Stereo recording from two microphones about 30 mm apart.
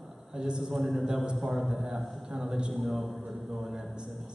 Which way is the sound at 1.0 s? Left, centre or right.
Right.